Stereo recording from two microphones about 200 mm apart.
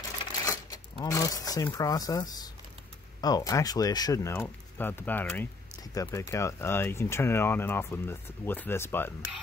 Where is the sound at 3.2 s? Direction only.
20° left (ahead or behind).